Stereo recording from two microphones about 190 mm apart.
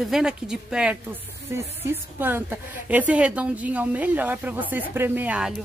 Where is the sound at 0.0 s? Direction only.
Centre (ahead or behind).